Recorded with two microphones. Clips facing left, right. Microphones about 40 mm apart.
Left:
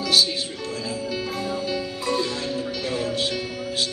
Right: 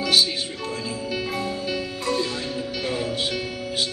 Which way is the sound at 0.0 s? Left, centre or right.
Right.